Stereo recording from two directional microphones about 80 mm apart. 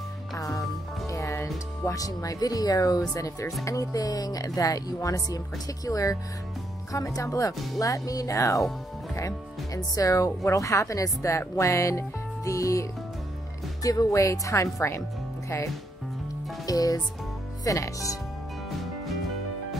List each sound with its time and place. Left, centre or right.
0.4 s music: left
1.1 s speech: left
9.8 s speech: left
13.8 s speech: left
16.6 s speech: left